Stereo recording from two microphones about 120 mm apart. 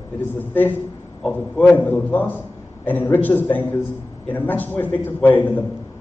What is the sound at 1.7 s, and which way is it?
A man's voice, 15° left (ahead or behind).